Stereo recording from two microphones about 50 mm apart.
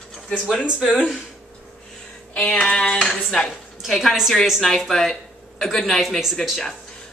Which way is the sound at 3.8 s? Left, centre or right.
Centre.